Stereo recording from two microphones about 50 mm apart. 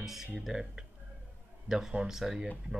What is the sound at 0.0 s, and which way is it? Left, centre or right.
Speech, centre.